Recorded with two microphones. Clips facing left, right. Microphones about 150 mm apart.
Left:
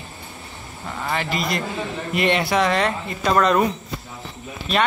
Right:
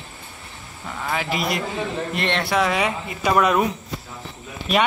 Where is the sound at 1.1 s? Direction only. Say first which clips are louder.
Even; 5° right (ahead or behind).